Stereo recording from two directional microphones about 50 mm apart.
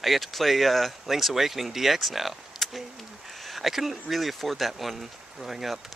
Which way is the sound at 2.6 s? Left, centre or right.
Centre.